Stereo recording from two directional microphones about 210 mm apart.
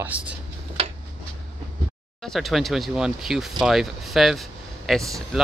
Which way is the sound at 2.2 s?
Centre (ahead or behind).